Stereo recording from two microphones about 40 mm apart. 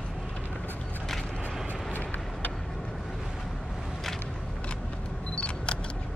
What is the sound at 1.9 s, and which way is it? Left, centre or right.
Vehicle, left.